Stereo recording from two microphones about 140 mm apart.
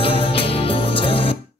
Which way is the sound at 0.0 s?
40° left (ahead or behind).